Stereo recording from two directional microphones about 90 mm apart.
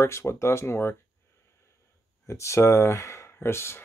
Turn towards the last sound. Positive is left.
turn(degrees=30)  # may be behind; listen again after turning